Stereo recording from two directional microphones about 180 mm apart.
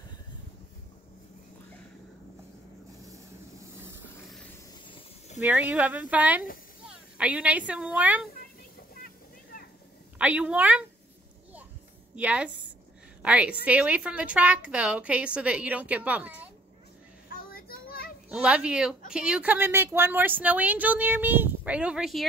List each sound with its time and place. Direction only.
3.1 s vehicle: 20° right (ahead or behind)
5.4 s speech: 10° right (ahead or behind)
10.1 s speech: 5° right (ahead or behind)
12.2 s speech: 5° right (ahead or behind)
17.3 s children playing: 55° left (ahead or behind)
18.3 s speech: 5° right (ahead or behind)